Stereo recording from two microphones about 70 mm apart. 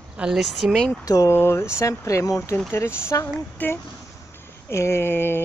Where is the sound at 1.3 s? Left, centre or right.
Left.